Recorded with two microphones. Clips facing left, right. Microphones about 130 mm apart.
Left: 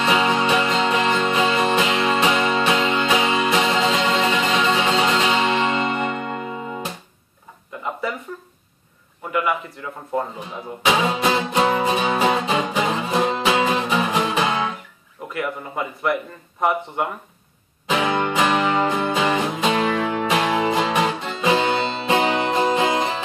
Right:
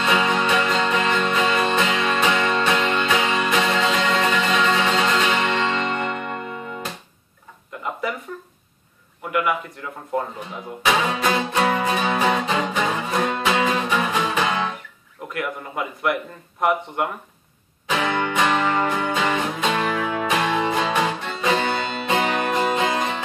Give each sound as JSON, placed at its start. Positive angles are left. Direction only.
{"t": 0.0, "sound": "music", "side_deg": 20}
{"t": 9.3, "sound": "speech", "side_deg": 0}
{"t": 10.9, "sound": "music", "side_deg": 20}
{"t": 15.3, "sound": "speech", "side_deg": 0}
{"t": 17.8, "sound": "music", "side_deg": 20}